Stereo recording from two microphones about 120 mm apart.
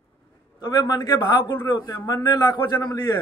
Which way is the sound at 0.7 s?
35° left (ahead or behind).